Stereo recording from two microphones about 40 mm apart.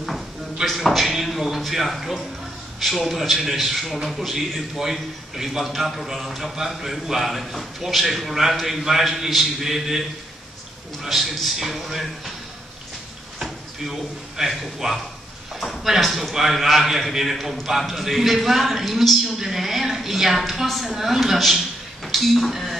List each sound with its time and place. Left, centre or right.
0.7 s a man's voice: centre
13.4 s speech: centre
16.0 s a man's voice: centre
22.0 s a sound: centre